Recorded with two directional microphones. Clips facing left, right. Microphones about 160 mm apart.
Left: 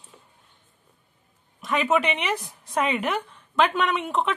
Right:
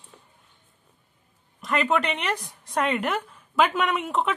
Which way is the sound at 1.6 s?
Centre (ahead or behind).